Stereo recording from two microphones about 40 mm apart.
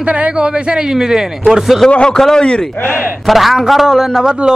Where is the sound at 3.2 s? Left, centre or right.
Centre.